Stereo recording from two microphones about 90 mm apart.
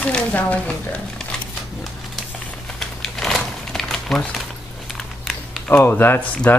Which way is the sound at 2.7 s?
5° left (ahead or behind).